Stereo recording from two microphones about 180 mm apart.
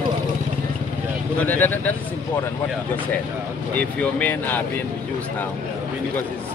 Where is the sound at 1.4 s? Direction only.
10° left (ahead or behind).